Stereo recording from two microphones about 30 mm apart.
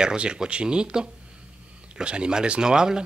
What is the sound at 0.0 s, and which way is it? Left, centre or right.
Speech, right.